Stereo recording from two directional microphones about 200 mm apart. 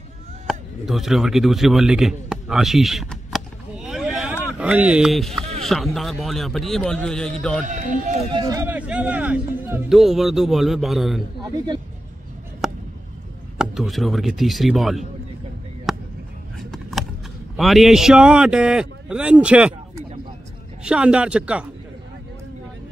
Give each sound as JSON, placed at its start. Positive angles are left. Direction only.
{"t": 0.5, "sound": "a sound", "side_deg": 0}
{"t": 4.6, "sound": "speech", "side_deg": -5}
{"t": 7.6, "sound": "speech", "side_deg": -40}
{"t": 8.3, "sound": "speech", "side_deg": -20}
{"t": 12.6, "sound": "a sound", "side_deg": 0}
{"t": 13.6, "sound": "speech", "side_deg": 0}
{"t": 15.9, "sound": "a sound", "side_deg": 0}
{"t": 16.5, "sound": "vehicle", "side_deg": 0}
{"t": 17.6, "sound": "a man's voice", "side_deg": 0}